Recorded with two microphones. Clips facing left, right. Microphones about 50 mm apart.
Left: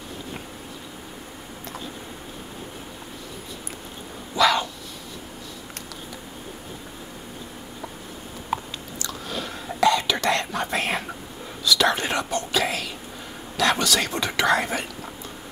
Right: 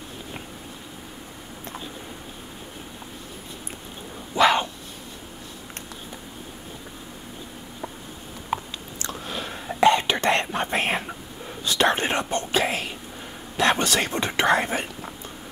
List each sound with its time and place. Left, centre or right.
4.4 s dog: right
8.5 s chewing: centre
9.8 s whispering: right
13.6 s speech: right